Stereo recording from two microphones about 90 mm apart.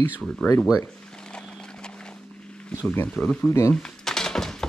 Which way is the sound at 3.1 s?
10° left (ahead or behind).